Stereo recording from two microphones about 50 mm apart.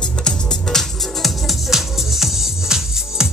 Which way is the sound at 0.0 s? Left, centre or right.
Centre.